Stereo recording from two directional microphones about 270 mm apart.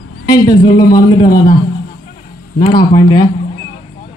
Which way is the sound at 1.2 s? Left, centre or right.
Left.